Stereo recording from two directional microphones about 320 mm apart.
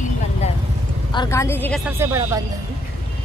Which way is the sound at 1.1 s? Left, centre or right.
Centre.